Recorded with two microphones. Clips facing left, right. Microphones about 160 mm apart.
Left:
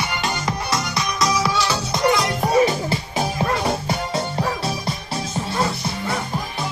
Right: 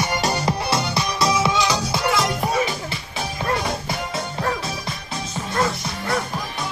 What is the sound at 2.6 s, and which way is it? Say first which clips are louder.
Music: left 7 dB; 40° left (ahead or behind).